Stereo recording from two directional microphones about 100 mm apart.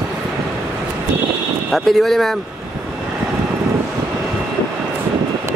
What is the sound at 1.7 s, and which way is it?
Speech, centre (ahead or behind).